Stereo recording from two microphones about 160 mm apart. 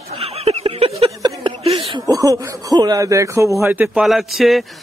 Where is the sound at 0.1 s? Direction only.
40° right (ahead or behind).